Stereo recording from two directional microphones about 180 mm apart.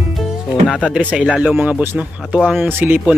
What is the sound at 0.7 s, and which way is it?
Speech, centre (ahead or behind).